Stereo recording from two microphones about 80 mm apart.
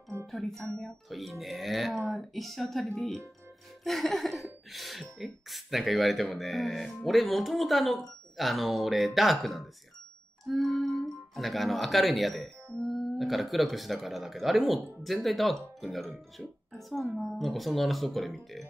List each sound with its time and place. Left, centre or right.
0.3 s speech: centre